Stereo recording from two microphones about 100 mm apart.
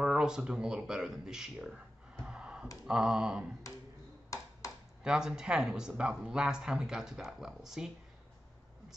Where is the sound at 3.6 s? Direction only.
35° left (ahead or behind).